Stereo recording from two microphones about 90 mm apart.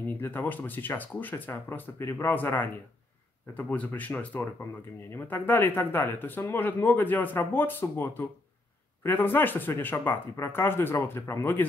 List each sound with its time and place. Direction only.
0.1 s speech: 20° left (ahead or behind)